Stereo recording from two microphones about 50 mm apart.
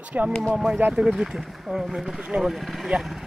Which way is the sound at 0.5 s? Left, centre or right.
Centre.